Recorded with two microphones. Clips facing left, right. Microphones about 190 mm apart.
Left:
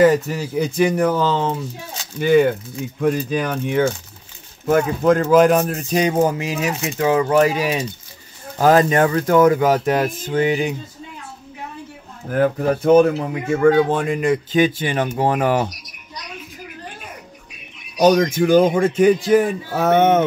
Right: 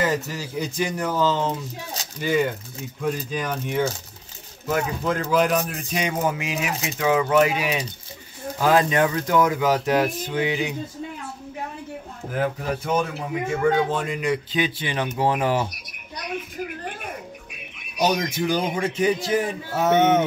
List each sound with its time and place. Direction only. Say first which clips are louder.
0.0 s speech: left 10 dB; 60° left (ahead or behind)
4.6 s speech: left 9 dB; 50° left (ahead or behind)
12.3 s speech: left 8 dB; 55° left (ahead or behind)
18.0 s speech: left 8 dB; 50° left (ahead or behind)